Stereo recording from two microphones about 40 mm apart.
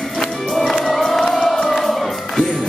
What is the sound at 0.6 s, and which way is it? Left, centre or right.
Music, centre.